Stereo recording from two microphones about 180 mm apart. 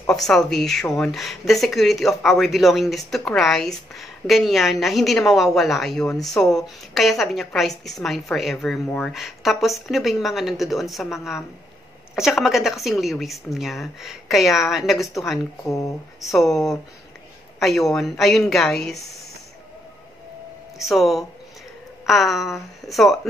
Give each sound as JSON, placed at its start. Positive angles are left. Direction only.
{"t": 0.1, "sound": "a woman's voice", "side_deg": 0}
{"t": 15.6, "sound": "speech", "side_deg": 15}
{"t": 16.3, "sound": "a woman's voice", "side_deg": 0}
{"t": 17.6, "sound": "a woman's voice", "side_deg": 0}
{"t": 20.8, "sound": "a woman's voice", "side_deg": 0}